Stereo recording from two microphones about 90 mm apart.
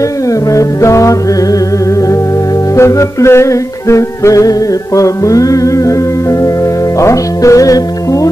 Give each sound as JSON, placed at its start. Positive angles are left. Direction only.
{"t": 0.5, "sound": "music", "side_deg": 35}
{"t": 2.7, "sound": "music", "side_deg": 35}
{"t": 7.0, "sound": "speech", "side_deg": 35}